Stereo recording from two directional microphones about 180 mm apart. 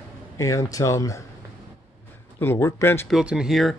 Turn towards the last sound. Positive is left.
turn(degrees=0)  # may be behind; listen again after turning